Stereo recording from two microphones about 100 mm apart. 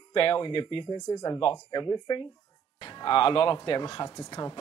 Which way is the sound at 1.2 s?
65° left (ahead or behind).